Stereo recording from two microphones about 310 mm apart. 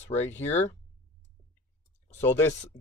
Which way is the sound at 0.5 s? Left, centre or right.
Left.